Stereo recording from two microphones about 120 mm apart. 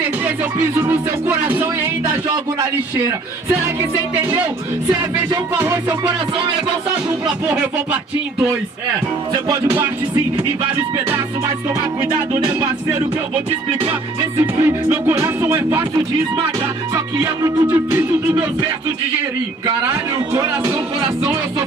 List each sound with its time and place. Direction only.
0.6 s speech: 15° right (ahead or behind)
5.6 s speech: 20° right (ahead or behind)
14.4 s music: 20° right (ahead or behind)
16.9 s music: 35° right (ahead or behind)
19.6 s music: 25° right (ahead or behind)